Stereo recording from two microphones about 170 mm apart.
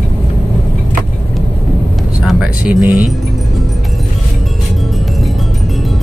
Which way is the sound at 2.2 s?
5° right (ahead or behind).